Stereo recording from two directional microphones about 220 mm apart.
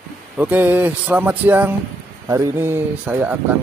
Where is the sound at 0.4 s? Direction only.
10° right (ahead or behind).